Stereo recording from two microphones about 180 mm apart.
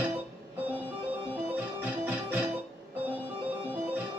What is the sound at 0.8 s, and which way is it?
Music, 10° right (ahead or behind).